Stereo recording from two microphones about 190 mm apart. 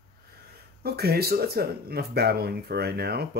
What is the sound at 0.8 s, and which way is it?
Speech, 55° right (ahead or behind).